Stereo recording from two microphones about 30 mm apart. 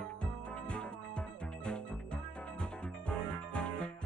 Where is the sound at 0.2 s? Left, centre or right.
Left.